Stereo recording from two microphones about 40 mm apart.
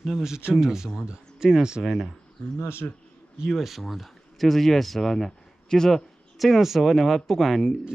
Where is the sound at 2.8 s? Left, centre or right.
Left.